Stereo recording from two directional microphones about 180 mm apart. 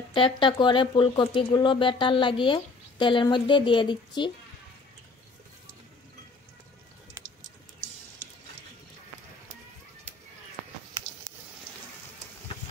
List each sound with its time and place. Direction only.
0.1 s speech: 30° left (ahead or behind)